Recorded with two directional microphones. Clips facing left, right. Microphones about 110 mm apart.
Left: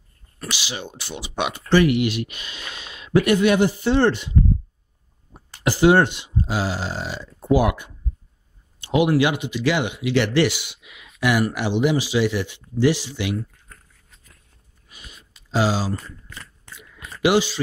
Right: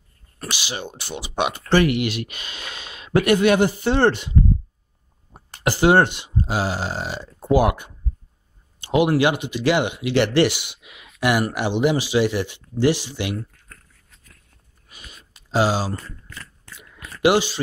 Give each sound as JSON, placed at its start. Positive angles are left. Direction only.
{"t": 0.4, "sound": "speech", "side_deg": -50}
{"t": 5.5, "sound": "speech", "side_deg": -55}
{"t": 15.3, "sound": "speech", "side_deg": -55}
{"t": 16.3, "sound": "biting", "side_deg": 15}
{"t": 17.2, "sound": "speech", "side_deg": -55}